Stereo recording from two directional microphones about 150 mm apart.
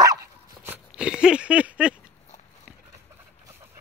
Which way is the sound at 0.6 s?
10° right (ahead or behind).